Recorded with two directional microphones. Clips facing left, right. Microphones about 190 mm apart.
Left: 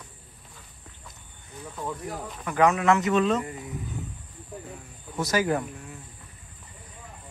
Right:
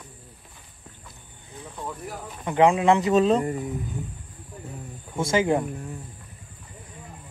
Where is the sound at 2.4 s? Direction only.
25° right (ahead or behind).